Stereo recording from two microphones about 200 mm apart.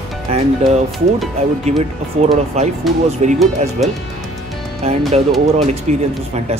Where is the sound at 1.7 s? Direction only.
30° right (ahead or behind).